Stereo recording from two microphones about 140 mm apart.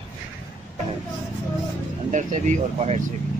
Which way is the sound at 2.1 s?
55° right (ahead or behind).